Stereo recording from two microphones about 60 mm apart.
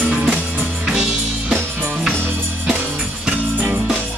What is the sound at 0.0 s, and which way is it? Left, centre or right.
Music, right.